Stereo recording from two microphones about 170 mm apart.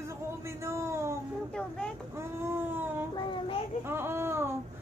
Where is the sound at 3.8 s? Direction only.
15° right (ahead or behind).